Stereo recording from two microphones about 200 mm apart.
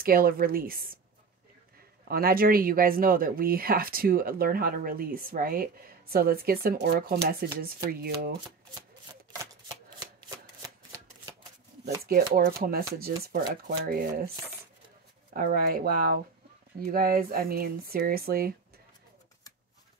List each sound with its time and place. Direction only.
0.0 s speech: 45° right (ahead or behind)
2.0 s speech: 50° right (ahead or behind)
12.0 s speech: 50° right (ahead or behind)
15.3 s speech: 50° right (ahead or behind)